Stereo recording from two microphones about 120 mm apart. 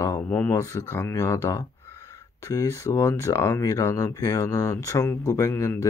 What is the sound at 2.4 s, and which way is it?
Speech, 25° left (ahead or behind).